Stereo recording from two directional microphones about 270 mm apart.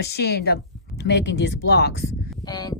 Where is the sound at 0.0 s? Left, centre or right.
Left.